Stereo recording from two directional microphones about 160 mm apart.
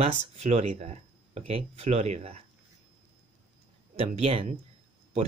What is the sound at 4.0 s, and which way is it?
Speech, 40° right (ahead or behind).